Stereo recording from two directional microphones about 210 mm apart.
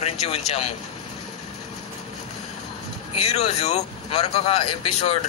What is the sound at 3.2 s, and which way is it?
Speech, 30° left (ahead or behind).